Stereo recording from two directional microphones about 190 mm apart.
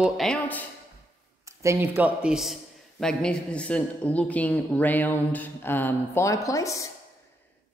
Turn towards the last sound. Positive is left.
turn(degrees=15)  # may be behind; listen again after turning